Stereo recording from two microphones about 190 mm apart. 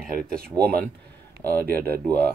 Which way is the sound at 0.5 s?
20° right (ahead or behind).